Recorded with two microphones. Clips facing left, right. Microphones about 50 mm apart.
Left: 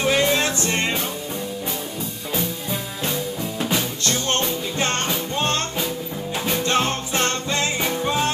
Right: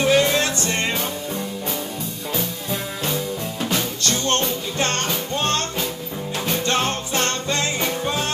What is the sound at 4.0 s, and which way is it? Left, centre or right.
Music, centre.